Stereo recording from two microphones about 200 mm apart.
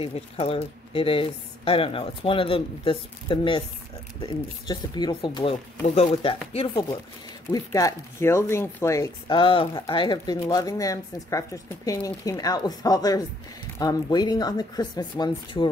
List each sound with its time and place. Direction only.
0.0 s speech: 30° left (ahead or behind)